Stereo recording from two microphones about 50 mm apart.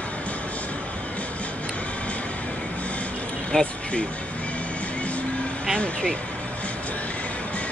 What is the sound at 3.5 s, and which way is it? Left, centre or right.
Speech, centre.